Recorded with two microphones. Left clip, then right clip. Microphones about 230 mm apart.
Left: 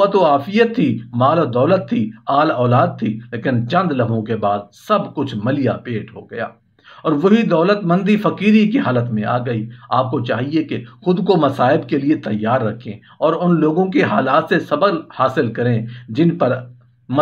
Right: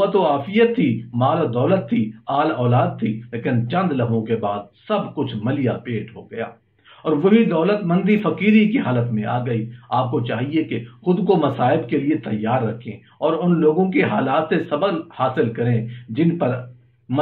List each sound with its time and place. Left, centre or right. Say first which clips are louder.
0.0 s a man's voice: left 4 dB; left